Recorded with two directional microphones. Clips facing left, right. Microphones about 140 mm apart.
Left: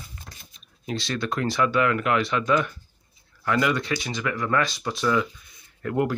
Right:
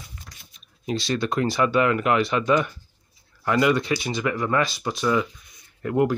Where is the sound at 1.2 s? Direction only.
15° right (ahead or behind).